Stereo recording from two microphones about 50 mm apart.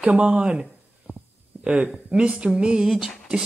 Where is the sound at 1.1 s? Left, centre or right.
Right.